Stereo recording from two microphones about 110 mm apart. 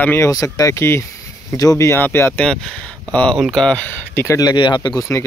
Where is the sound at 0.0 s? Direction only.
20° left (ahead or behind).